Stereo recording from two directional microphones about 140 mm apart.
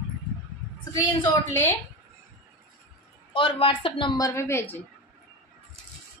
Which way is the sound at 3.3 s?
40° left (ahead or behind).